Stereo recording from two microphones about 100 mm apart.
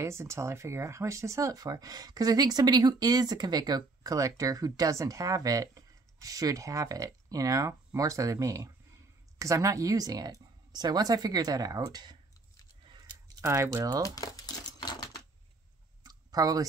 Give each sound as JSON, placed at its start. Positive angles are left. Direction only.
{"t": 0.0, "sound": "speech", "side_deg": -30}
{"t": 13.4, "sound": "speech", "side_deg": -30}
{"t": 14.0, "sound": "coin", "side_deg": 35}
{"t": 16.0, "sound": "clicking", "side_deg": -40}